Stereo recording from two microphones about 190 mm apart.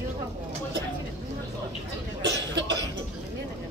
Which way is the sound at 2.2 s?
65° right (ahead or behind).